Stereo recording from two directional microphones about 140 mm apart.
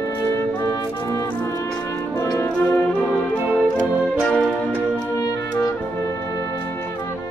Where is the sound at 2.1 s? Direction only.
20° left (ahead or behind).